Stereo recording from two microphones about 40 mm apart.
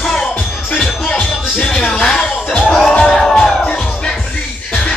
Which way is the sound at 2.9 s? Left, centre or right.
Centre.